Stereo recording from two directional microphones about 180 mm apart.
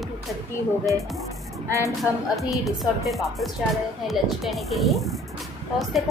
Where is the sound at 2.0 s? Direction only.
Centre (ahead or behind).